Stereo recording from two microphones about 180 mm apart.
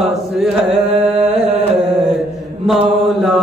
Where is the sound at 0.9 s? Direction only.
35° right (ahead or behind).